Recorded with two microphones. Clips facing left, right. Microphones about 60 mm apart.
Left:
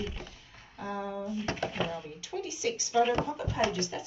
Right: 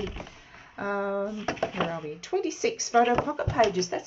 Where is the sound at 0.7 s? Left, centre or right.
Right.